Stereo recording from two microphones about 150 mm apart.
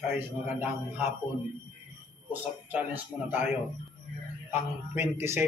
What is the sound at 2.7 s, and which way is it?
Speech, 15° right (ahead or behind).